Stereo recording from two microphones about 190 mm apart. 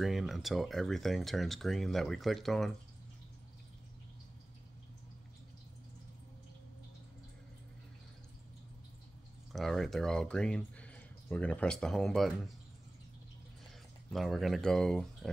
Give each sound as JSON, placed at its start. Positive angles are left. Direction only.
{"t": 0.0, "sound": "speech", "side_deg": 0}
{"t": 9.5, "sound": "speech", "side_deg": 0}
{"t": 14.1, "sound": "speech", "side_deg": 0}